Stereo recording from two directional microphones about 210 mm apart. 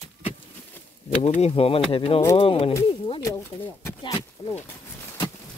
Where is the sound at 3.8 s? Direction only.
15° left (ahead or behind).